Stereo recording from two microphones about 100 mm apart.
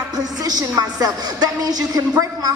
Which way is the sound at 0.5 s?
40° right (ahead or behind).